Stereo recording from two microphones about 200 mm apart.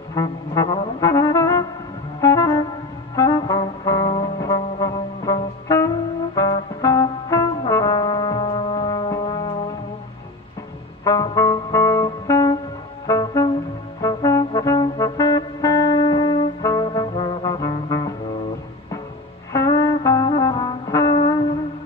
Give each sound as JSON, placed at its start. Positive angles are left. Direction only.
{"t": 0.1, "sound": "brass instrument", "side_deg": 20}
{"t": 2.1, "sound": "music", "side_deg": 15}
{"t": 3.2, "sound": "brass instrument", "side_deg": 20}
{"t": 11.1, "sound": "music", "side_deg": 20}
{"t": 13.0, "sound": "brass instrument", "side_deg": 20}
{"t": 14.0, "sound": "music", "side_deg": 15}
{"t": 19.5, "sound": "music", "side_deg": 15}